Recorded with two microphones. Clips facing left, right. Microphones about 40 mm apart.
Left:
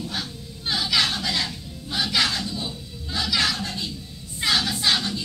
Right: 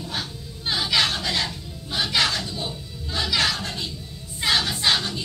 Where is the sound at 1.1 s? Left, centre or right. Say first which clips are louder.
Right 1 dB; centre.